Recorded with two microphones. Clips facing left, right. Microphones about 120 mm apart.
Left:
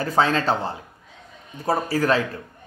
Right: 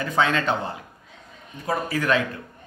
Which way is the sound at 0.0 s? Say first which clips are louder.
Left 2 dB; 35° left (ahead or behind).